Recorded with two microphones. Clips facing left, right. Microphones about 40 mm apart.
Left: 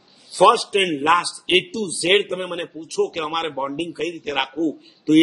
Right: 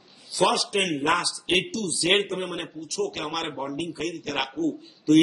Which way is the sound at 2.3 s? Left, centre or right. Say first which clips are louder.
Left 4 dB; left.